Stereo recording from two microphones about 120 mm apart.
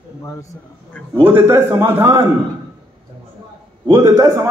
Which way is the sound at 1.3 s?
20° right (ahead or behind).